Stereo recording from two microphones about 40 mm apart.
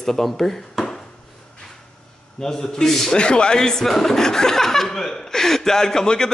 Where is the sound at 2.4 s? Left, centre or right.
Centre.